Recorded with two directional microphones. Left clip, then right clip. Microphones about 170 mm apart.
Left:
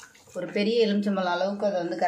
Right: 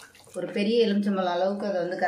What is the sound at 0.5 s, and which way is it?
Speech, 45° left (ahead or behind).